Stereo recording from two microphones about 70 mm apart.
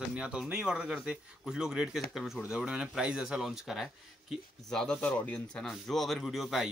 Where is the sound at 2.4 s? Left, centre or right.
Centre.